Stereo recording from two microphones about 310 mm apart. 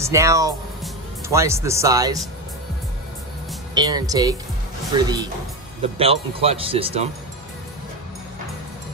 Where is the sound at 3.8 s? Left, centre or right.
Centre.